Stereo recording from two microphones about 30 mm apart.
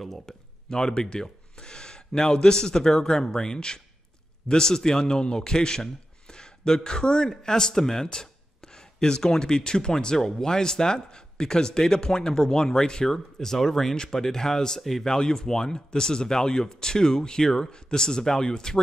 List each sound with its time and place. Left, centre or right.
0.1 s speech: left
13.9 s speech: left
14.8 s speech: centre
15.0 s speech: left